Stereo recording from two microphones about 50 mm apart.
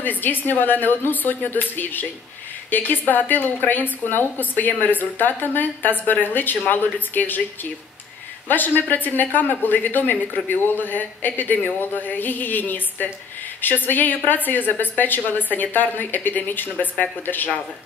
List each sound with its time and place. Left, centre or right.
0.0 s a woman's voice: left
8.5 s a woman's voice: left